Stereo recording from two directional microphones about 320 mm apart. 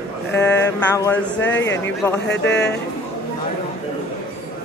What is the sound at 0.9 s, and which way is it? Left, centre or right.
Speech, centre.